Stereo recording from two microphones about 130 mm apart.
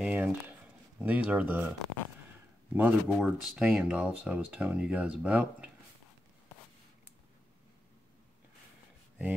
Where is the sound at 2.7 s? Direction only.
10° right (ahead or behind).